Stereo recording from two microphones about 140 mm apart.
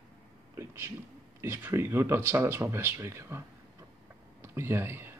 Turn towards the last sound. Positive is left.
turn(degrees=-15)  # may be behind; listen again after turning